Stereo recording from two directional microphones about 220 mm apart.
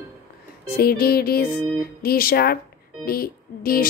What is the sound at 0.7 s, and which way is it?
Music, 45° left (ahead or behind).